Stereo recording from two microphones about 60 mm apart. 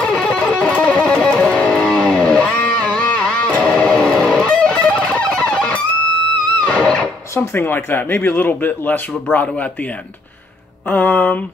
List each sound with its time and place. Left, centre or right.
0.0 s music: centre
1.8 s music: centre
7.3 s speech: left
10.9 s speech: left